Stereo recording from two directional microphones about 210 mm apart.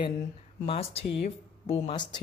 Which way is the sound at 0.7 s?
30° left (ahead or behind).